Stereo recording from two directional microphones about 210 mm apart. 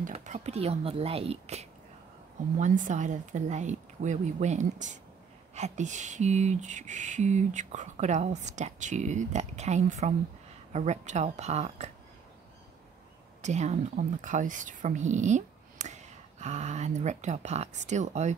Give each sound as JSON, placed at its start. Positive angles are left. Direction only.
{"t": 0.0, "sound": "speech", "side_deg": -35}
{"t": 2.6, "sound": "a sound", "side_deg": -35}
{"t": 13.4, "sound": "a woman's voice", "side_deg": -35}